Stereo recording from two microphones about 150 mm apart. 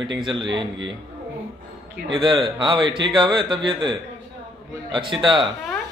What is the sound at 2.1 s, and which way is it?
Speech, 30° right (ahead or behind).